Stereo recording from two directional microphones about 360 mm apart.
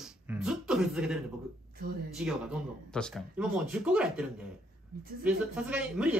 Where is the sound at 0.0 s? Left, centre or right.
Centre.